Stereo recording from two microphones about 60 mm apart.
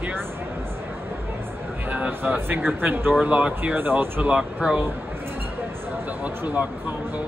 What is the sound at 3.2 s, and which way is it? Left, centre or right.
Speech, right.